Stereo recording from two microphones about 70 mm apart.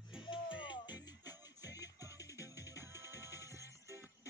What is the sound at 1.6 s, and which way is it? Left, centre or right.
Music, left.